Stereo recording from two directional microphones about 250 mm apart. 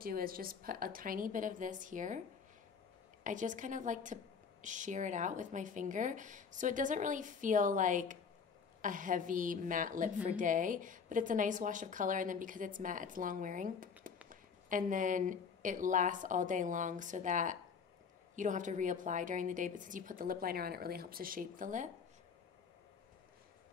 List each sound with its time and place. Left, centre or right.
0.0 s speech: right
3.3 s speech: right